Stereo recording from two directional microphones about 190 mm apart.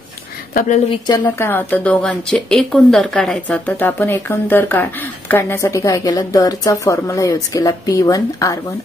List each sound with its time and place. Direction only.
0.8 s speech: 20° left (ahead or behind)
1.2 s a woman's voice: 10° left (ahead or behind)